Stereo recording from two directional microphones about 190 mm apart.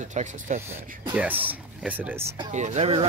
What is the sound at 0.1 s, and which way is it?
Speech, 40° right (ahead or behind).